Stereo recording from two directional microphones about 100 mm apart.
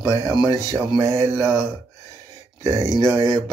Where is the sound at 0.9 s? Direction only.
35° right (ahead or behind).